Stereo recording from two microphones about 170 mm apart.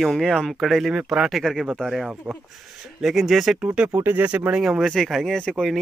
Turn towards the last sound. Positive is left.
turn(degrees=0)  # may be behind; listen again after turning